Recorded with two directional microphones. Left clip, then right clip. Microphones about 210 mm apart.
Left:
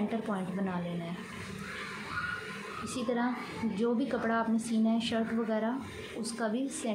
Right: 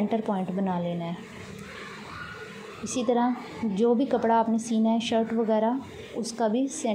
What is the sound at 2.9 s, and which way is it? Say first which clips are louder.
A woman's voice: right 8 dB; 20° right (ahead or behind).